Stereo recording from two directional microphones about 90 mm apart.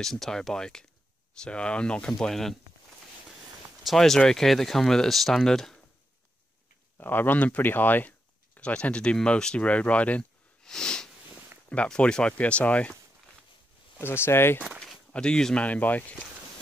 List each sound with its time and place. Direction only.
0.0 s speech: 5° left (ahead or behind)
3.8 s speech: 5° left (ahead or behind)
7.0 s speech: 20° left (ahead or behind)
13.9 s speech: 25° left (ahead or behind)
14.8 s speech: 10° left (ahead or behind)